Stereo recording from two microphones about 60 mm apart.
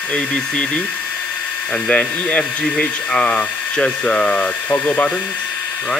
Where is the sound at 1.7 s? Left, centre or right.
Centre.